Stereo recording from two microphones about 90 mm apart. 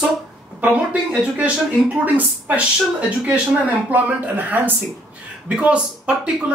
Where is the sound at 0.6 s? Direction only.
15° right (ahead or behind).